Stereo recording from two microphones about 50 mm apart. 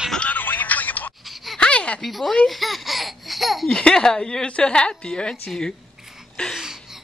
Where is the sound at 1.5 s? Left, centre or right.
Centre.